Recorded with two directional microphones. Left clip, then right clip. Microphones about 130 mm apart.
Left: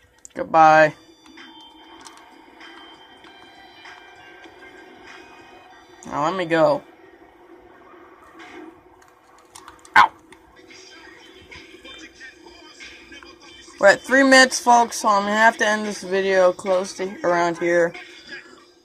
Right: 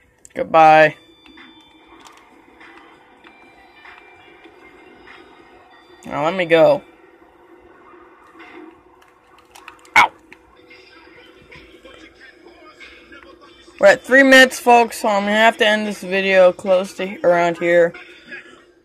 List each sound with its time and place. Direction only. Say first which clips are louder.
0.3 s speech: right 3 dB; 25° right (ahead or behind)
6.0 s speech: right 4 dB; 30° right (ahead or behind)
13.7 s speech: right 4 dB; 25° right (ahead or behind)
17.6 s speech: right 6 dB; 20° right (ahead or behind)